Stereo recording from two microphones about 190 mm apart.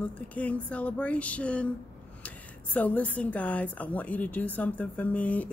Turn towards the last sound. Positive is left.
turn(degrees=10)  # may be behind; listen again after turning